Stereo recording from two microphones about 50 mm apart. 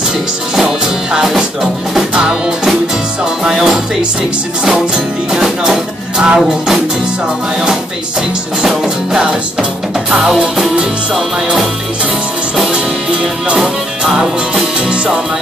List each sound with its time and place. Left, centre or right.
0.6 s music: centre
3.4 s music: centre
8.6 s music: centre
12.7 s music: centre
13.6 s music: centre